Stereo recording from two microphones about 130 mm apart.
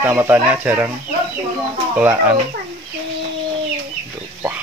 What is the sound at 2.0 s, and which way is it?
Speech, 15° right (ahead or behind).